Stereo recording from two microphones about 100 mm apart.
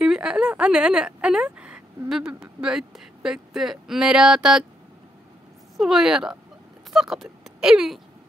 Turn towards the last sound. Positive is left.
turn(degrees=-5)  # may be behind; listen again after turning